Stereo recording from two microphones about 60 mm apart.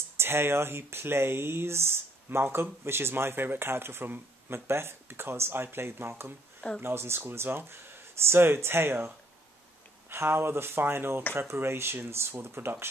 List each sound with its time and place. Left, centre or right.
0.2 s speech: right